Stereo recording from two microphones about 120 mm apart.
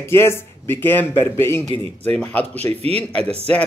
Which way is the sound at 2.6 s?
60° right (ahead or behind).